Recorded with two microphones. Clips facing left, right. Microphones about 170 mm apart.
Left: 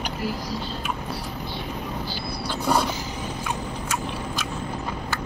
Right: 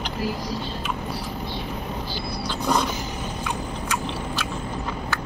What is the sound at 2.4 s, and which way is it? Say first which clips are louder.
Roaring cats: left 1 dB; 10° left (ahead or behind).